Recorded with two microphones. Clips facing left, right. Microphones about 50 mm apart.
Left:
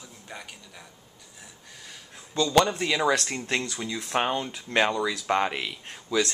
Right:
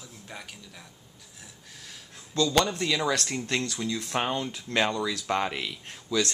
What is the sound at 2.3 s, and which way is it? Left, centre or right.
A man's voice, centre.